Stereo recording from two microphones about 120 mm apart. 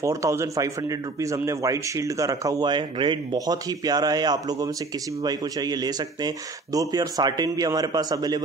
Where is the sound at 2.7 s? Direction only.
40° right (ahead or behind).